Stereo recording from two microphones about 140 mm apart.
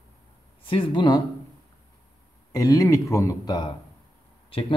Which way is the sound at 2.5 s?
25° left (ahead or behind).